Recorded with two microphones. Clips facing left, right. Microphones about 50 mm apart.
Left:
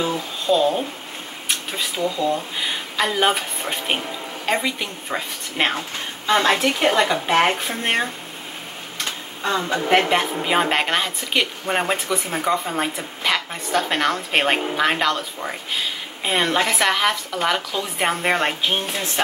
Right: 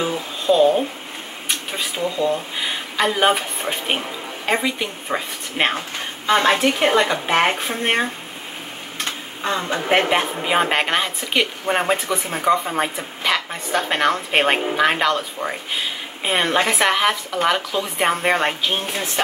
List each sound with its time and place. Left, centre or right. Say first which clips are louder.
0.0 s speech: right 1 dB; centre
2.2 s speech: right 1 dB; centre